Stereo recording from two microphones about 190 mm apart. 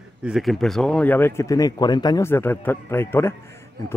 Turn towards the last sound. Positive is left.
turn(degrees=10)  # may be behind; listen again after turning